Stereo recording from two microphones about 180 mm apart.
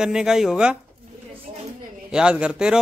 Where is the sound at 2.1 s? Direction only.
5° right (ahead or behind).